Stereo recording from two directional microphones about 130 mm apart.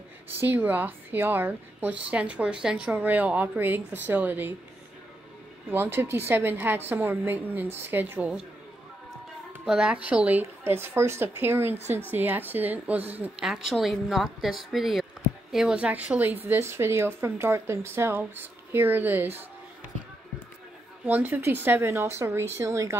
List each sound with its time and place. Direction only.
0.4 s speech: 15° right (ahead or behind)
5.7 s speech: 15° right (ahead or behind)
9.5 s speech: 5° right (ahead or behind)
21.0 s speech: 15° right (ahead or behind)